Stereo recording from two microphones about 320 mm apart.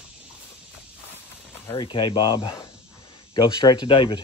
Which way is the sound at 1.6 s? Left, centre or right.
Centre.